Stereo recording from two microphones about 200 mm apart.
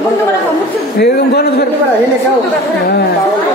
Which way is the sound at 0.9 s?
50° left (ahead or behind).